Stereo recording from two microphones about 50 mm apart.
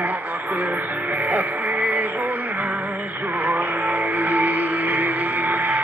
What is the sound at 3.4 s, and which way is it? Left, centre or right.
Music, right.